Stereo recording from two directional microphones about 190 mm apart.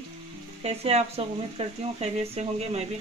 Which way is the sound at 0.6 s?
35° right (ahead or behind).